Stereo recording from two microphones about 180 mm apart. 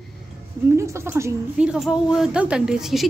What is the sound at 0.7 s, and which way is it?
Speech, 15° right (ahead or behind).